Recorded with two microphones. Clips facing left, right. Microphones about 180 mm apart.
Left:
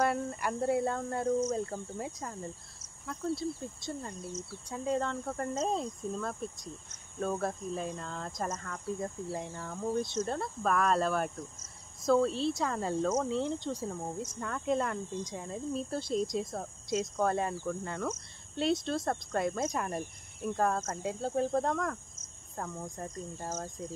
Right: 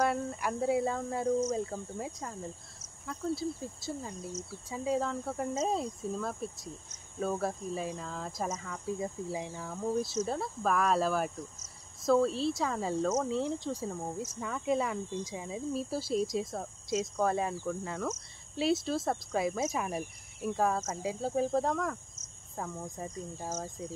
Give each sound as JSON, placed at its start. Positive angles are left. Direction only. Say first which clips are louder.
{"t": 0.0, "sound": "speech", "louder": "even", "side_deg": 0}